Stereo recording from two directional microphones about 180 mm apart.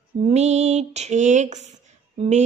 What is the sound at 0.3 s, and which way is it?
Speech, 40° right (ahead or behind).